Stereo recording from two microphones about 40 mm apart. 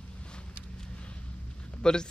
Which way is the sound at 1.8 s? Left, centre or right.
Centre.